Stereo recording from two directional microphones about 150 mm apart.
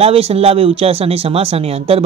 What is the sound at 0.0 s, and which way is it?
Speech, 40° right (ahead or behind).